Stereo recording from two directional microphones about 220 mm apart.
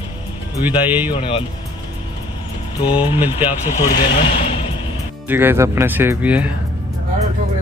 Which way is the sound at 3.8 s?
20° left (ahead or behind).